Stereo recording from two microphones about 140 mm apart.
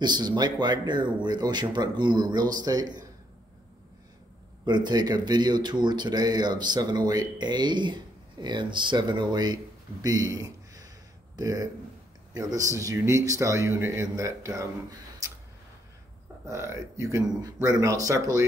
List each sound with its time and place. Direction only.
0.0 s speech: 30° right (ahead or behind)
4.6 s a man's voice: 30° right (ahead or behind)
15.2 s tick: 20° right (ahead or behind)
16.4 s a man's voice: 20° right (ahead or behind)